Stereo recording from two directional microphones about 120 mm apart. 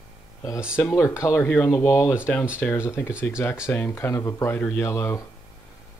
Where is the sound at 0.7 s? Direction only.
20° left (ahead or behind).